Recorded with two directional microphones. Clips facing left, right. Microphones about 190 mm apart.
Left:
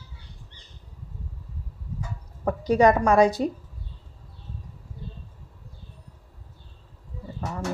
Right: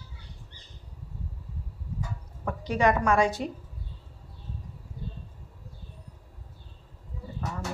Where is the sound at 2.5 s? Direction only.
40° left (ahead or behind).